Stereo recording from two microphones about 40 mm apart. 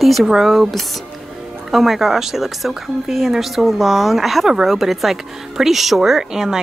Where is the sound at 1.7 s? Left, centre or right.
Centre.